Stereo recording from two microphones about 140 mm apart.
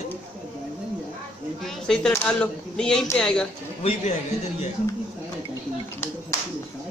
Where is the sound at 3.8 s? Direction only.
55° left (ahead or behind).